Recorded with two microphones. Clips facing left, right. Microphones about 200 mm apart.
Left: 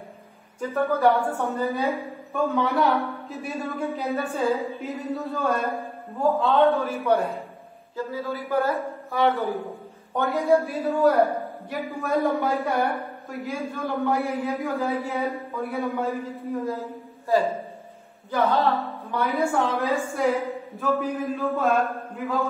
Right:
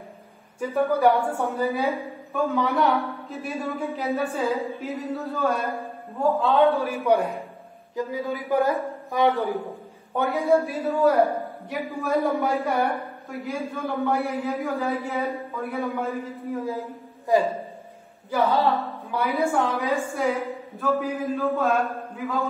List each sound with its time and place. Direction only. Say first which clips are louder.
0.6 s speech: right 1 dB; 15° right (ahead or behind)
2.3 s a woman's voice: even; centre (ahead or behind)
6.8 s speech: right 1 dB; 15° right (ahead or behind)
10.1 s a woman's voice: even; centre (ahead or behind)
17.3 s speech: right 1 dB; 15° right (ahead or behind)
18.7 s music: even; 5° right (ahead or behind)
19.4 s a woman's voice: even; centre (ahead or behind)